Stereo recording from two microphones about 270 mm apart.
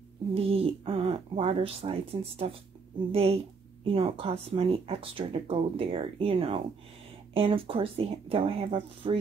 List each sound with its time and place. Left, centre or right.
0.3 s speech: right